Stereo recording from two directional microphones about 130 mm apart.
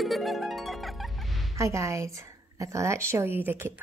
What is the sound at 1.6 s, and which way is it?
Speech, 25° right (ahead or behind).